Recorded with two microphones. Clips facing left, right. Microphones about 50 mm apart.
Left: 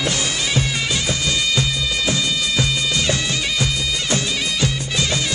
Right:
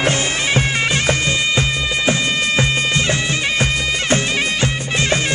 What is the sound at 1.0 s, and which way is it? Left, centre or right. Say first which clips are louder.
Bagpipes: right 4 dB; right.